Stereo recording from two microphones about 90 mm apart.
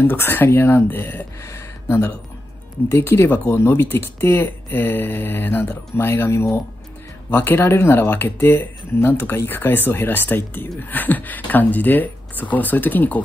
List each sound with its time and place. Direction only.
0.0 s speech: 25° left (ahead or behind)